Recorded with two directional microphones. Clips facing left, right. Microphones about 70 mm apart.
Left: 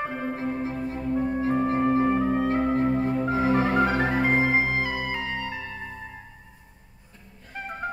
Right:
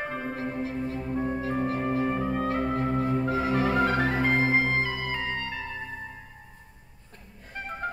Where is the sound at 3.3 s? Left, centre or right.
Left.